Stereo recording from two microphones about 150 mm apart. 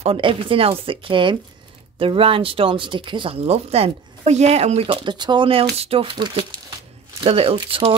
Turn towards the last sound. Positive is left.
turn(degrees=-40)  # may be behind; listen again after turning